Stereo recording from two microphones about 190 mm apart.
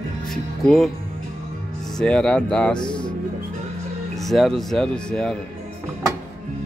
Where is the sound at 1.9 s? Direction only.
5° left (ahead or behind).